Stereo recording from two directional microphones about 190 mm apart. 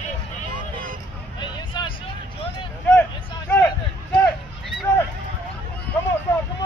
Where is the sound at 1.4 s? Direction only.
25° left (ahead or behind).